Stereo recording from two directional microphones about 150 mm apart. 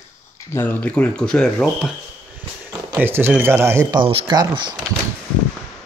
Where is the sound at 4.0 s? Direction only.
30° right (ahead or behind).